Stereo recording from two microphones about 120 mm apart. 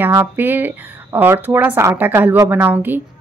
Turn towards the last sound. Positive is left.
turn(degrees=-15)  # may be behind; listen again after turning